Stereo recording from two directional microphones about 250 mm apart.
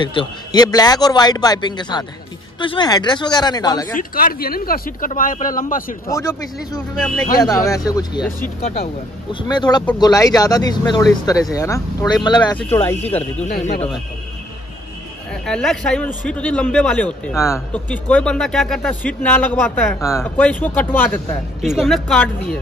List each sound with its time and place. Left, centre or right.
0.0 s a man's voice: centre
3.9 s speech: left
6.0 s a man's voice: centre
9.3 s a man's voice: centre
15.4 s a man's voice: centre